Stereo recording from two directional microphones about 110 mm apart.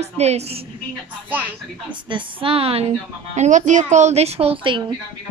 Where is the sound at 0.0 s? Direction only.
75° right (ahead or behind).